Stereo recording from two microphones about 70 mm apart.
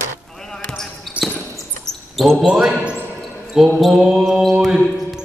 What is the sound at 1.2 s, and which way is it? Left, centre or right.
Basketball bounce, centre.